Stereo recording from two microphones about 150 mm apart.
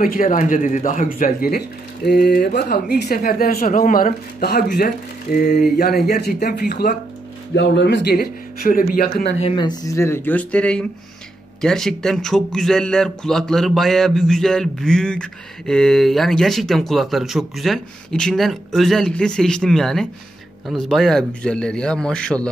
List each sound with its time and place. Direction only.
0.0 s speech: 65° left (ahead or behind)
2.0 s speech: 90° left
9.6 s speech: 25° left (ahead or behind); by 22.5 s 5° left (ahead or behind)